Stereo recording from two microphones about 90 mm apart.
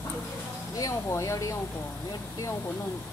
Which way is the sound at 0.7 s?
35° left (ahead or behind).